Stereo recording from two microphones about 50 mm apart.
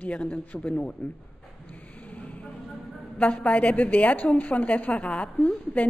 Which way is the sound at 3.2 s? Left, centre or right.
Left.